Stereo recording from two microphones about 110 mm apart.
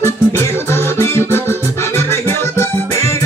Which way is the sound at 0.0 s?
25° left (ahead or behind).